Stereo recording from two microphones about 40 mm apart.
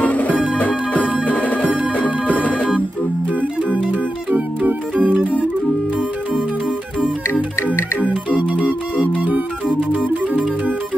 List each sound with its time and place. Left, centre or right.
0.0 s music: left
0.3 s music: right
0.6 s music: left
3.3 s music: right
4.6 s music: right
8.1 s music: right
9.2 s music: right